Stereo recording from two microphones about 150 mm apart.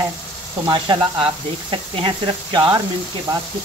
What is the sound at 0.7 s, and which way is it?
Speech, 30° right (ahead or behind).